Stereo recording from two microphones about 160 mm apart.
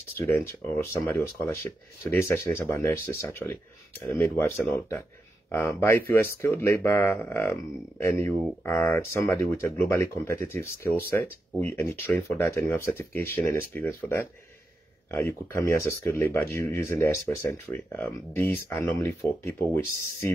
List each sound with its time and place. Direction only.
0.2 s speech: 15° left (ahead or behind)
8.6 s speech: 15° left (ahead or behind)